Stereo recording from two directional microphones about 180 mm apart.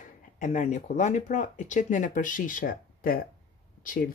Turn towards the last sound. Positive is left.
turn(degrees=50)  # may be behind; listen again after turning